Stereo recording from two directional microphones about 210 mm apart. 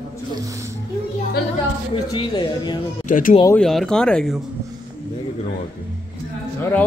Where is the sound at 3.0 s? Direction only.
40° left (ahead or behind).